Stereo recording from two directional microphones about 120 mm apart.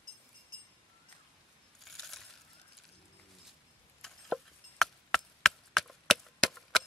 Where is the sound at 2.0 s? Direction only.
Centre (ahead or behind).